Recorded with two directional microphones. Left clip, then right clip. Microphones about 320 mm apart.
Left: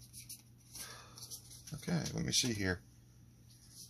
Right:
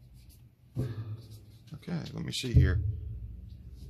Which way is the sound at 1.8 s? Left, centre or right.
Centre.